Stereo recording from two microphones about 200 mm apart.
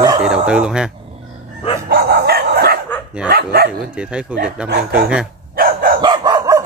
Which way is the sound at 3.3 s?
50° right (ahead or behind).